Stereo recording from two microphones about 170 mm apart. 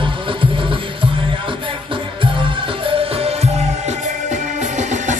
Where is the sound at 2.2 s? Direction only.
30° right (ahead or behind).